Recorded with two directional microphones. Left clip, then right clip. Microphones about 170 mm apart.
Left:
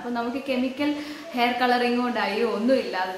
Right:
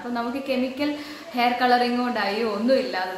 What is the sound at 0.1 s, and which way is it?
A woman's voice, 5° right (ahead or behind).